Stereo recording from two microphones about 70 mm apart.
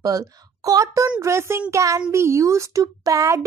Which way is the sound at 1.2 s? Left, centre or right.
Right.